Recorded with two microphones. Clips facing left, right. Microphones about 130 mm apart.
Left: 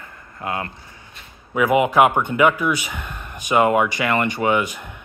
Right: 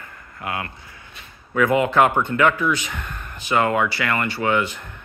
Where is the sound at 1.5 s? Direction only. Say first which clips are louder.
Left 1 dB; 15° left (ahead or behind).